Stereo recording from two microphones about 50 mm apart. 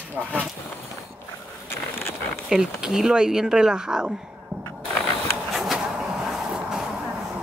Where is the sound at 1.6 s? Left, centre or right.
Left.